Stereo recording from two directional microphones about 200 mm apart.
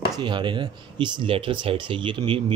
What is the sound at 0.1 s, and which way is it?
Speech, 25° right (ahead or behind).